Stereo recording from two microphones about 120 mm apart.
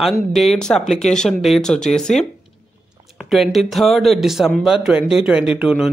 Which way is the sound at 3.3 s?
Centre (ahead or behind).